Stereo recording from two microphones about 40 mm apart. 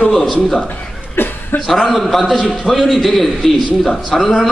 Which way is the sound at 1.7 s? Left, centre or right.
Centre.